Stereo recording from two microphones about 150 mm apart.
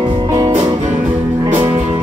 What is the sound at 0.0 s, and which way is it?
Music, 30° right (ahead or behind).